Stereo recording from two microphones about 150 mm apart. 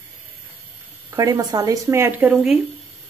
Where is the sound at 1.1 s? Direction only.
25° right (ahead or behind); by 2.6 s 5° right (ahead or behind).